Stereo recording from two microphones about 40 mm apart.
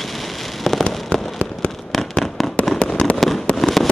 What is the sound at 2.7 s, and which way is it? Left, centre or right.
Fireworks, left.